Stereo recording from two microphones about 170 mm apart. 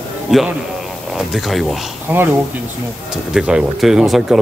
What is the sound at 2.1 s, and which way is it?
Speech, 10° right (ahead or behind).